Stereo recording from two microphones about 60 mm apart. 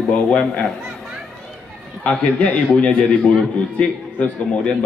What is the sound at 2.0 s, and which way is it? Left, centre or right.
A man's voice, centre.